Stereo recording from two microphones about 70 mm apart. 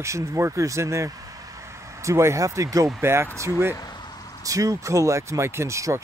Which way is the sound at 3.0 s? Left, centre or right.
Right.